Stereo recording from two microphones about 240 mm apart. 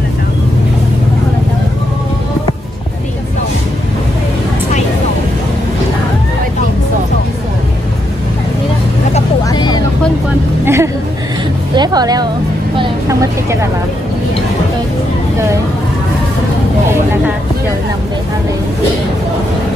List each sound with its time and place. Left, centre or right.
9.4 s vehicle: centre
10.6 s music: centre
12.7 s vehicle: centre